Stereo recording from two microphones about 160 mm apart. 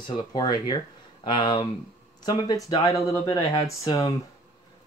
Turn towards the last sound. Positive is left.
turn(degrees=25)  # may be behind; listen again after turning